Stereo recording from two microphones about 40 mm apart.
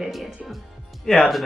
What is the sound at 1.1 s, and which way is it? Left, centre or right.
Speech, centre.